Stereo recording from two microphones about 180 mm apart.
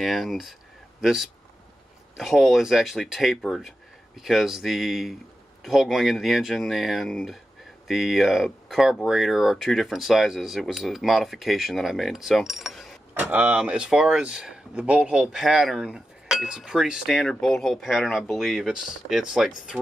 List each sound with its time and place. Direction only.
0.0 s speech: centre (ahead or behind)